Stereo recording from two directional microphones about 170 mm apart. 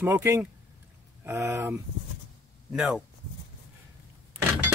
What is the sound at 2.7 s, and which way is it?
Speech, 5° right (ahead or behind).